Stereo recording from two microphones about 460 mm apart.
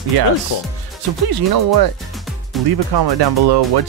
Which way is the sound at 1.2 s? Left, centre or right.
Right.